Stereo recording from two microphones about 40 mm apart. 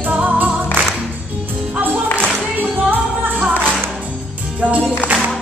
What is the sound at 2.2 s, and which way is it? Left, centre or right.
Music, right.